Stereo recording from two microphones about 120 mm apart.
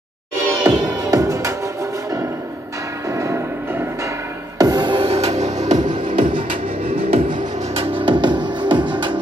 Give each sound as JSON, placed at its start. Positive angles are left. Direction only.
{"t": 1.1, "sound": "music", "side_deg": -30}
{"t": 4.6, "sound": "music", "side_deg": -35}
{"t": 5.9, "sound": "music", "side_deg": -45}
{"t": 6.9, "sound": "music", "side_deg": -55}
{"t": 8.0, "sound": "music", "side_deg": -40}